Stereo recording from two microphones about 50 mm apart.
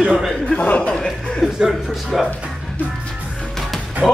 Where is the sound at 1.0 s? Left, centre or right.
Centre.